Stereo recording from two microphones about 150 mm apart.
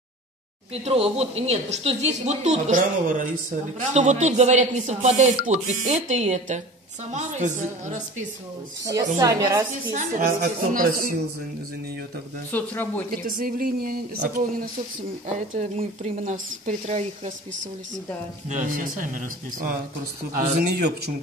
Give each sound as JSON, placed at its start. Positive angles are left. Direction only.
{"t": 0.8, "sound": "speech", "side_deg": -45}
{"t": 8.9, "sound": "a woman's voice", "side_deg": -25}
{"t": 9.9, "sound": "speech", "side_deg": -60}
{"t": 12.4, "sound": "speech", "side_deg": 10}
{"t": 13.1, "sound": "speech", "side_deg": -70}
{"t": 15.5, "sound": "speech", "side_deg": -55}
{"t": 18.5, "sound": "speech", "side_deg": -60}
{"t": 20.3, "sound": "speech", "side_deg": -90}